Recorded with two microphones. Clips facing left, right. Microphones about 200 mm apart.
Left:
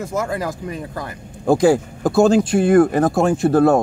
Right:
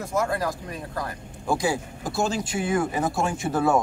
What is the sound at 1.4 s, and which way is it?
Speech, 55° left (ahead or behind).